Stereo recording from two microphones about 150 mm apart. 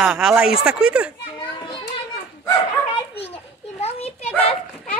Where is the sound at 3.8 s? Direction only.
45° left (ahead or behind).